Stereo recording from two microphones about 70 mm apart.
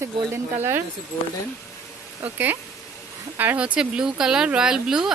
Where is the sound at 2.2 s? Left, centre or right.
Right.